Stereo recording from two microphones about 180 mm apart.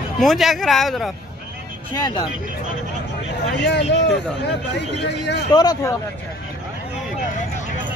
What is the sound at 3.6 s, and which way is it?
Speech, 75° left (ahead or behind).